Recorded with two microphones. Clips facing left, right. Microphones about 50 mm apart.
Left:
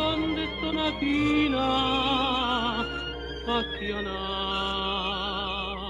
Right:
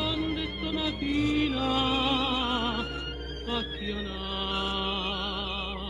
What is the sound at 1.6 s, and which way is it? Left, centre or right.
Music, centre.